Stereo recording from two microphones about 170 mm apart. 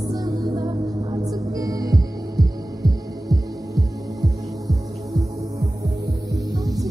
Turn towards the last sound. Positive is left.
turn(degrees=-20)  # may be behind; listen again after turning